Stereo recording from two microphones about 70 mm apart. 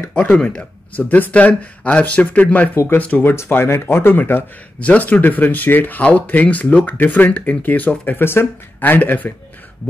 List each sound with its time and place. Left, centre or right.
0.1 s speech: centre
2.7 s speech: left
3.0 s speech: left
3.3 s speech: left